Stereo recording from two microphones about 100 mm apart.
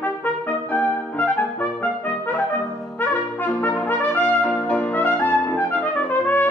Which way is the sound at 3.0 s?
15° left (ahead or behind).